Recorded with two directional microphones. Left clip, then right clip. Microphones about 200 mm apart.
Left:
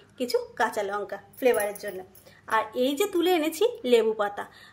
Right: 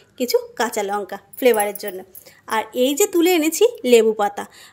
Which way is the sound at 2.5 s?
40° right (ahead or behind).